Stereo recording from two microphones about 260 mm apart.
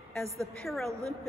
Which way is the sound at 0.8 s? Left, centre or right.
Centre.